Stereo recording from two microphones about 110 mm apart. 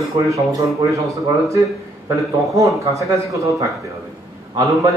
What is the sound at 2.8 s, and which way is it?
A man's voice, 30° right (ahead or behind).